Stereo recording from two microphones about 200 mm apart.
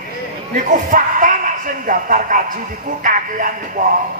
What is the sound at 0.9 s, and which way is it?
A man's voice, 40° right (ahead or behind).